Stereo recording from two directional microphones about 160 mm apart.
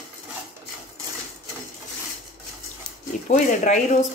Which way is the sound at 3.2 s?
50° left (ahead or behind).